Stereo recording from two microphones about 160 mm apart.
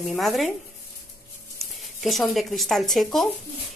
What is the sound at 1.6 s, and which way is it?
Speech, centre (ahead or behind).